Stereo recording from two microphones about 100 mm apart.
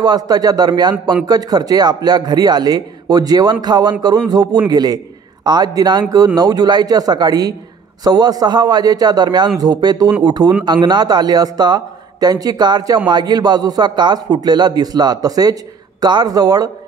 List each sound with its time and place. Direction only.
0.0 s a man's voice: 40° right (ahead or behind)